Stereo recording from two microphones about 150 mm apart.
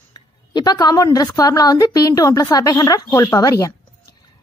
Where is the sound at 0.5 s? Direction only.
25° left (ahead or behind).